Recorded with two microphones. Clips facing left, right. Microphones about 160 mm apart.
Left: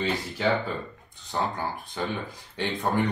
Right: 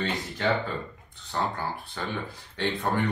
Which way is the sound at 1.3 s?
15° left (ahead or behind).